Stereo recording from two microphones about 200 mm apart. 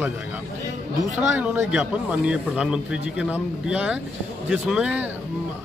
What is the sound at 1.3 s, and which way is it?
A man's voice, 10° right (ahead or behind).